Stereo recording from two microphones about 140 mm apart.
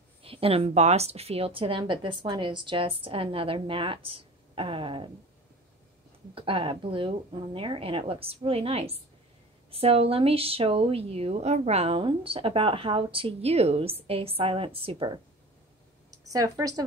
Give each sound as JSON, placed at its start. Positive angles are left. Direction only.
{"t": 0.2, "sound": "a woman's voice", "side_deg": -40}
{"t": 6.3, "sound": "a woman's voice", "side_deg": -40}
{"t": 16.3, "sound": "a woman's voice", "side_deg": -25}